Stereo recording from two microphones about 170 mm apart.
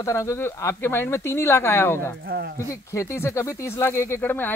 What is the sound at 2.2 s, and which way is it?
Speech, 70° right (ahead or behind).